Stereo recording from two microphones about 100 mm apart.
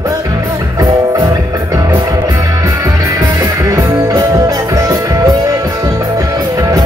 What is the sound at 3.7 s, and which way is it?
Music, 40° right (ahead or behind).